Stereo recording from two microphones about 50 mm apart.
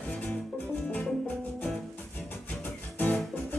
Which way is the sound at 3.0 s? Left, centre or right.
Left.